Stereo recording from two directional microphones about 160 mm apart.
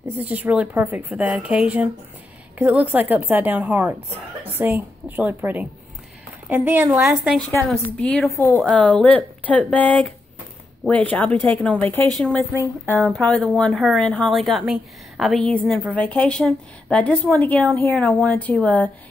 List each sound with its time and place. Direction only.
0.0 s a woman's voice: 10° right (ahead or behind)
8.4 s speech: 15° left (ahead or behind)
8.6 s a woman's voice: 5° left (ahead or behind)